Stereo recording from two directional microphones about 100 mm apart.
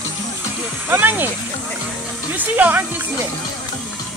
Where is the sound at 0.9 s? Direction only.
20° right (ahead or behind).